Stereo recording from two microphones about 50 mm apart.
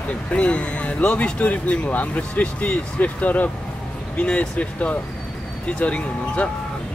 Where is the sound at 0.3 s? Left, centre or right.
Left.